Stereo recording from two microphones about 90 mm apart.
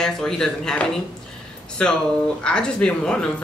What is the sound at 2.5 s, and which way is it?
Speech, 10° left (ahead or behind).